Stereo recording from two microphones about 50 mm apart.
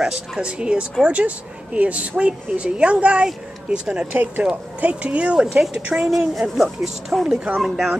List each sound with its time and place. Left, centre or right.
0.4 s a woman's voice: right
6.0 s speech: centre
7.2 s a woman's voice: right
7.6 s speech: centre